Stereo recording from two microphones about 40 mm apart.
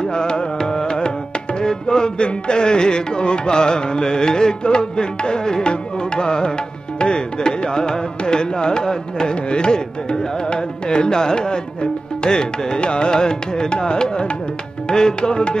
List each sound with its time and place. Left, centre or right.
0.0 s carnatic music: left